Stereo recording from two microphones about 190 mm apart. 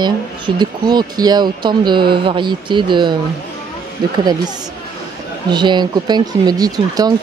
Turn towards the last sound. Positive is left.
turn(degrees=-20)  # may be behind; listen again after turning